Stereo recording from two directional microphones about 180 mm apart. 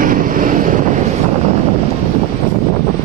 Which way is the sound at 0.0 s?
50° right (ahead or behind).